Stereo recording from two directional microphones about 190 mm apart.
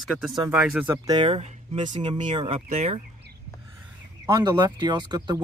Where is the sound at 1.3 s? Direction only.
35° right (ahead or behind).